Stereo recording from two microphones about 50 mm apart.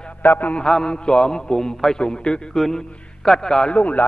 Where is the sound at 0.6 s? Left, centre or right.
Centre.